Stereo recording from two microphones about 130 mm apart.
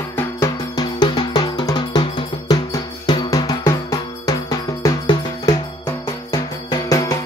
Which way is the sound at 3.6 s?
25° left (ahead or behind).